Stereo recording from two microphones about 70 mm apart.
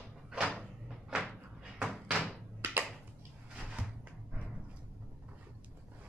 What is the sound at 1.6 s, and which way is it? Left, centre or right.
Cupboard open or close, centre.